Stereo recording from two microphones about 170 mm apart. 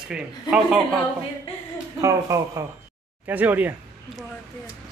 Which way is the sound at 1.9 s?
20° right (ahead or behind).